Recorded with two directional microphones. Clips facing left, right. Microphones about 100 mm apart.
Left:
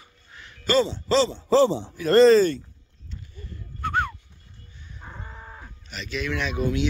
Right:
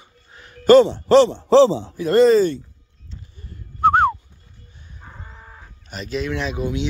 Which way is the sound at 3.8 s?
45° right (ahead or behind).